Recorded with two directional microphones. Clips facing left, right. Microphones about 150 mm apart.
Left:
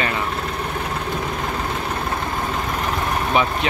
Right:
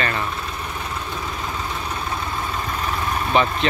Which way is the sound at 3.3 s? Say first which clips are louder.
Right 1 dB; 10° left (ahead or behind).